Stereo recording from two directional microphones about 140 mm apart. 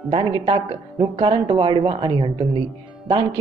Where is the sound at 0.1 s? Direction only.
35° right (ahead or behind).